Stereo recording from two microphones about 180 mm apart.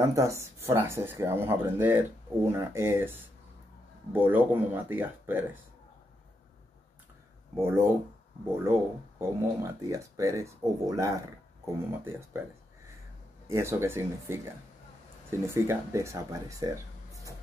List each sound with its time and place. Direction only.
0.0 s speech: 15° right (ahead or behind)
8.5 s speech: 15° right (ahead or behind)
13.5 s speech: 15° right (ahead or behind)
15.4 s speech: 15° right (ahead or behind)